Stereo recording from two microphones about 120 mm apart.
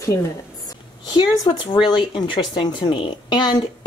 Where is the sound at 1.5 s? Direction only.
35° left (ahead or behind).